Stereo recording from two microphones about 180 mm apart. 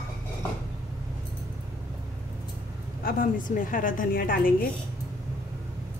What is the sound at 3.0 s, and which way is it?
A woman's voice, 55° left (ahead or behind).